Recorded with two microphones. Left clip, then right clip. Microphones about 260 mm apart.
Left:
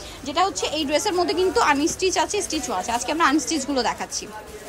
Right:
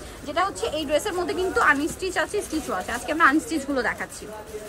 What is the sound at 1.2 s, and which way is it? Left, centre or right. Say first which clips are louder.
A woman's voice: left 3 dB; centre.